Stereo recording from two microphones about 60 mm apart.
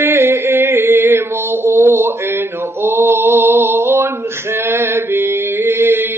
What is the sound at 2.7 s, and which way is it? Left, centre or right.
Mantra, right.